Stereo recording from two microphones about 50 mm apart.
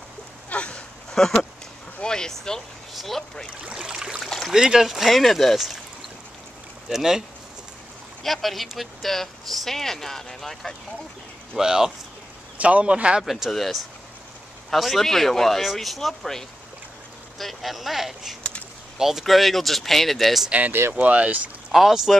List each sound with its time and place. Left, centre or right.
0.5 s a sound: left
1.1 s speech: centre
3.7 s a sound: centre
4.5 s speech: centre
6.9 s speech: centre
8.2 s speech: centre
11.5 s speech: centre
12.5 s speech: right
13.2 s speech: centre
20.9 s speech: right
21.7 s speech: centre